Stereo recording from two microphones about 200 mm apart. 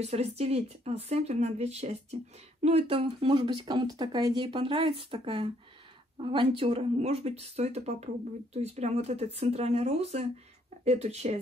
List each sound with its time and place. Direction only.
0.0 s speech: 35° right (ahead or behind)